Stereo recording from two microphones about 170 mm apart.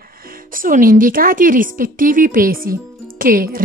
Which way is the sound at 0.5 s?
55° right (ahead or behind).